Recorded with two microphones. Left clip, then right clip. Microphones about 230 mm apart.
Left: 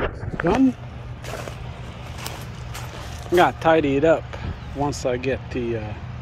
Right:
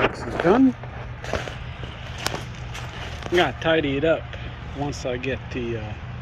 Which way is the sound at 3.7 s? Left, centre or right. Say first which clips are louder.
Left 3 dB; left.